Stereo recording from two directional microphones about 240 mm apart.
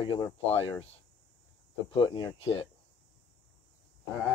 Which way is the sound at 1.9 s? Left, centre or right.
Centre.